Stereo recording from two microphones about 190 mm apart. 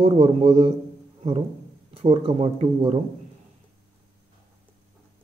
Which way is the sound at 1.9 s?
30° right (ahead or behind).